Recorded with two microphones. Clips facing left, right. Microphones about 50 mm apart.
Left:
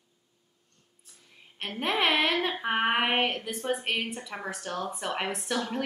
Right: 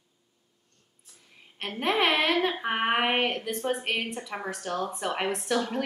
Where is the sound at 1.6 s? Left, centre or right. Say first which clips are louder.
Right 2 dB; centre.